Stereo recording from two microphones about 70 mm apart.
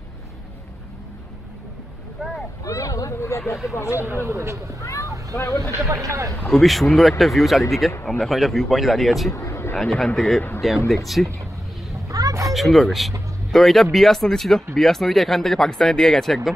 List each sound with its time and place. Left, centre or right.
2.6 s speech: left
4.0 s speech: right
4.8 s speech: left
6.0 s speech: right
6.3 s speech: centre
9.3 s a sound: left
9.8 s speech: centre
12.1 s a sound: right
12.5 s speech: centre